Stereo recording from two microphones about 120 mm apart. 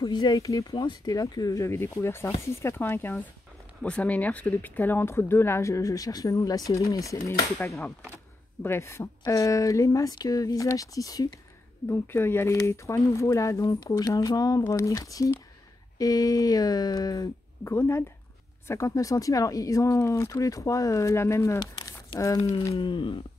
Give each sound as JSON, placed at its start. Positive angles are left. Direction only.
{"t": 0.0, "sound": "speech", "side_deg": 35}
{"t": 8.6, "sound": "speech", "side_deg": 20}
{"t": 22.8, "sound": "speech", "side_deg": 40}